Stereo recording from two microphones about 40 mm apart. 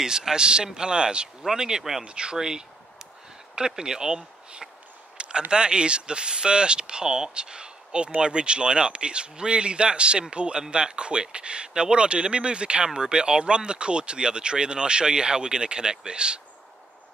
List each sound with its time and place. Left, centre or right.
0.0 s speech: centre
2.0 s speech: right
5.1 s a sound: right
5.5 s speech: right